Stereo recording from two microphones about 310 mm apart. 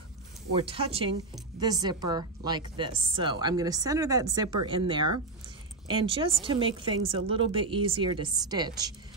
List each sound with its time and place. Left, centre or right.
0.7 s a woman's voice: centre